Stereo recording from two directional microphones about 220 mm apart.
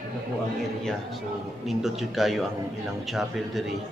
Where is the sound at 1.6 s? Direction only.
Centre (ahead or behind).